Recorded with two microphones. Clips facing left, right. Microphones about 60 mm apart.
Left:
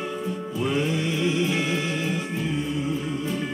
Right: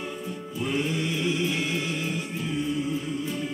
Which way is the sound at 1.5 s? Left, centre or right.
Left.